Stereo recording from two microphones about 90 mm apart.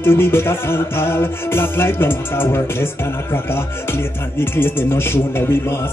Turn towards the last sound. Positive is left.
turn(degrees=25)  # may be behind; listen again after turning